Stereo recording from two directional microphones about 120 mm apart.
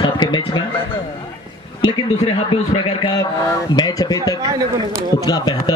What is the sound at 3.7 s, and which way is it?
Speech, 30° left (ahead or behind).